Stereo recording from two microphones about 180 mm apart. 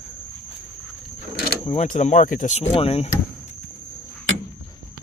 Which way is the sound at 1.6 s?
35° left (ahead or behind).